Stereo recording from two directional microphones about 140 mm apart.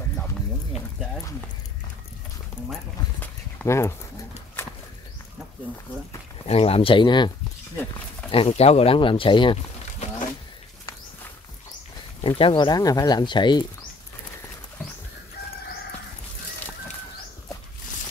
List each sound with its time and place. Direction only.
3.2 s a sound: 15° left (ahead or behind)
6.4 s speech: 45° left (ahead or behind)
8.3 s speech: 45° left (ahead or behind)
12.2 s speech: 40° left (ahead or behind)